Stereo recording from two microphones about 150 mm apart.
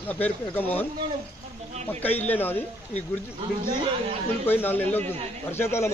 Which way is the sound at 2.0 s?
10° left (ahead or behind).